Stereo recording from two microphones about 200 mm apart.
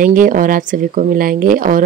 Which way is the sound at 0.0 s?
40° right (ahead or behind).